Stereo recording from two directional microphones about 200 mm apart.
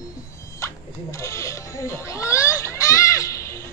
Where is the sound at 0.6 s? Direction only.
15° left (ahead or behind).